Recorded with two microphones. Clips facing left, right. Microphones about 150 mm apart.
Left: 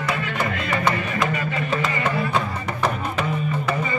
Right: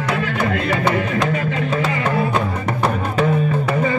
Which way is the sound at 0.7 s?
75° right (ahead or behind).